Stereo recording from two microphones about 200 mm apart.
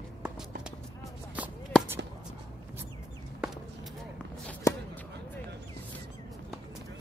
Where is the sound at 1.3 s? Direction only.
5° right (ahead or behind).